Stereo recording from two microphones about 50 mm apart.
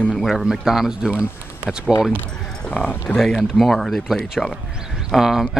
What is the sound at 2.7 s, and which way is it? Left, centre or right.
Speech, left.